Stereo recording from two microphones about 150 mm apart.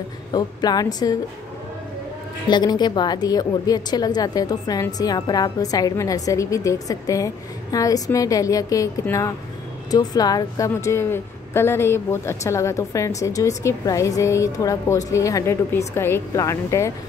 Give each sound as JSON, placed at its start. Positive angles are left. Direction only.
{"t": 0.3, "sound": "speech", "side_deg": 25}
{"t": 2.4, "sound": "speech", "side_deg": 30}